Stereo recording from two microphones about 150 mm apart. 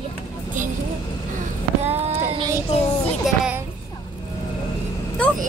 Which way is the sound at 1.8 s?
45° right (ahead or behind).